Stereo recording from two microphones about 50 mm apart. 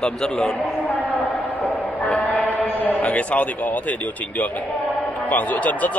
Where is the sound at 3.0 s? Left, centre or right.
Left.